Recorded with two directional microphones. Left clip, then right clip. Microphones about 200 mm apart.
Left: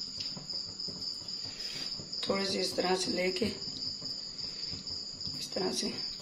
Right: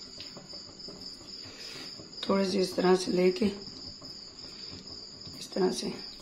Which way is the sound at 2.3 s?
55° right (ahead or behind).